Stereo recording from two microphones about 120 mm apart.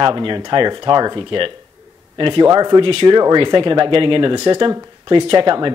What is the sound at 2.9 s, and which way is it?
Speech, 50° right (ahead or behind).